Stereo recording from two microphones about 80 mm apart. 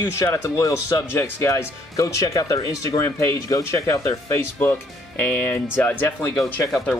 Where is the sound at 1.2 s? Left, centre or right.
Left.